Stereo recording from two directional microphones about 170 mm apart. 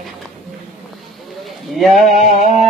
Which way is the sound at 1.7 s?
Centre (ahead or behind).